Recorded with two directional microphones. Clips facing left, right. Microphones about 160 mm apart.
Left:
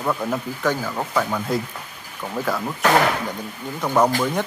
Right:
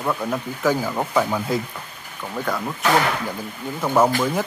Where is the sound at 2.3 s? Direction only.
5° left (ahead or behind).